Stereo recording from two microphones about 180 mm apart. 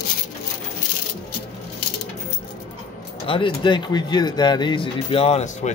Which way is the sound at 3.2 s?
30° left (ahead or behind).